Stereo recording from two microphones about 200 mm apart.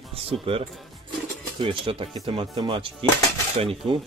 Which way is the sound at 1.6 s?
25° right (ahead or behind).